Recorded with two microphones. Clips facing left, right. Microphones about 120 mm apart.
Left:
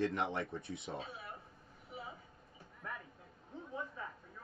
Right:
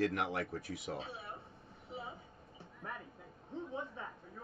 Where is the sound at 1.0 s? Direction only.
25° right (ahead or behind).